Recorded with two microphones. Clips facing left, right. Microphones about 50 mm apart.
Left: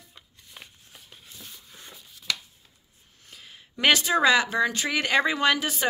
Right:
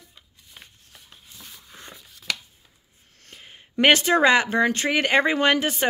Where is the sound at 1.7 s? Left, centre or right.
Right.